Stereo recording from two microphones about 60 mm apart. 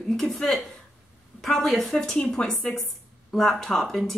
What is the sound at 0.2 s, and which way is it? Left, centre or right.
A woman's voice, centre.